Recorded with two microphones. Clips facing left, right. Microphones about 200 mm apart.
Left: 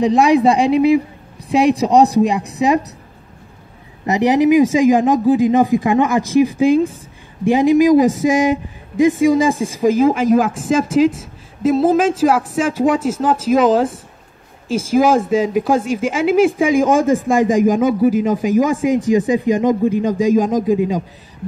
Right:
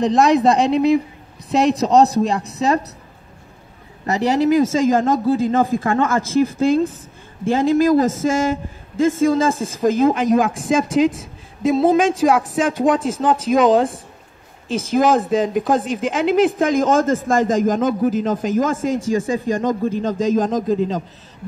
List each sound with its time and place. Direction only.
0.0 s a man's voice: 10° left (ahead or behind)
4.0 s a man's voice: 15° left (ahead or behind)